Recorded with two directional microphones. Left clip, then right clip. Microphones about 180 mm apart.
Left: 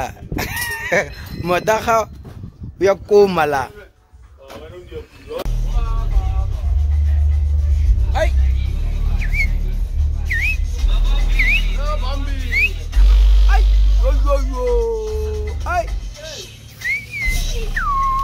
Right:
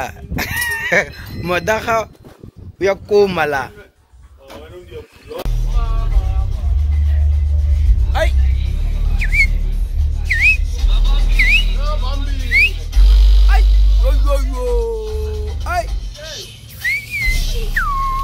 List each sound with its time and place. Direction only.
0.0 s cat: 5° left (ahead or behind)
1.4 s speech: 20° left (ahead or behind)
8.1 s music: 5° left (ahead or behind)
9.2 s music: 15° left (ahead or behind)
10.2 s music: 25° left (ahead or behind)
11.3 s music: 15° left (ahead or behind)
11.7 s music: centre (ahead or behind)
13.5 s a sound: 5° left (ahead or behind)
16.8 s whistling: 10° left (ahead or behind)